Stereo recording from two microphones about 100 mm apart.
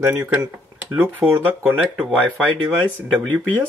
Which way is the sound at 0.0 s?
20° right (ahead or behind).